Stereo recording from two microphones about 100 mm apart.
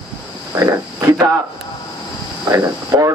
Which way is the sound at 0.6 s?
30° right (ahead or behind).